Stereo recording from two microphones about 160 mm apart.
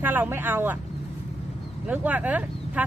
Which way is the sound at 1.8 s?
10° right (ahead or behind).